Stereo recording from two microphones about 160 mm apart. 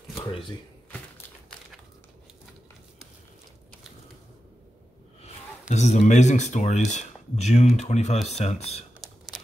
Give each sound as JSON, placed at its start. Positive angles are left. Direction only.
{"t": 5.2, "sound": "speech", "side_deg": 45}